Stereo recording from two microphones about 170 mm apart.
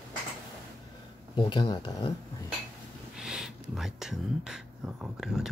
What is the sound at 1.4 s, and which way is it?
Speech, 25° left (ahead or behind).